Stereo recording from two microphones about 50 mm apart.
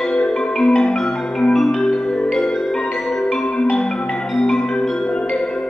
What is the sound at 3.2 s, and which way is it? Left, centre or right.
Music, centre.